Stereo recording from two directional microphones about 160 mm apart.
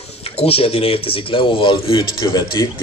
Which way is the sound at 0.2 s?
40° left (ahead or behind).